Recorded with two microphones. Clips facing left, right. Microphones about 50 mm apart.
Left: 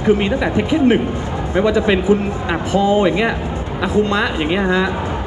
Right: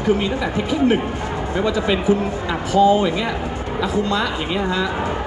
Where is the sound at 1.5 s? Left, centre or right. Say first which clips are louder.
Left 5 dB; left.